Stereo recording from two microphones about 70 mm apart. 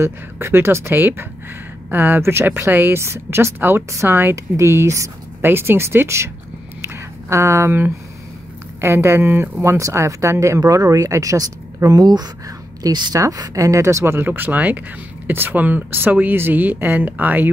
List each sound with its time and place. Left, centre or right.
0.0 s a woman's voice: right
5.4 s a woman's voice: right
6.8 s a sound: right
8.8 s a woman's voice: right
13.2 s a woman's voice: right